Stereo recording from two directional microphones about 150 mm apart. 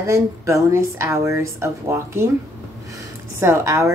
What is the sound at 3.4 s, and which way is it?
Speech, 20° right (ahead or behind).